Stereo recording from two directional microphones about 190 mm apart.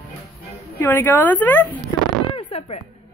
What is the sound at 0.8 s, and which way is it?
Speech, 10° left (ahead or behind).